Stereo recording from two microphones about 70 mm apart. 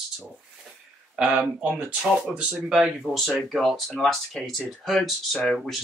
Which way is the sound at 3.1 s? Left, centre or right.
Left.